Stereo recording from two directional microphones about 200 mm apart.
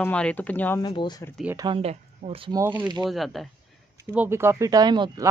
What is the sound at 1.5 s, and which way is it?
Speech, 20° right (ahead or behind).